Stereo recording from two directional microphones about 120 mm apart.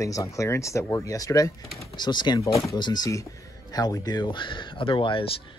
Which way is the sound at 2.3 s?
25° left (ahead or behind).